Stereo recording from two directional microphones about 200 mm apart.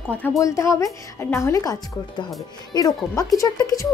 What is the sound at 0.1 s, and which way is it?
A woman's voice, 5° left (ahead or behind).